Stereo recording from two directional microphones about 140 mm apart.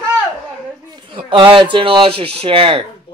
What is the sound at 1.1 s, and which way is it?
Speech, 40° right (ahead or behind).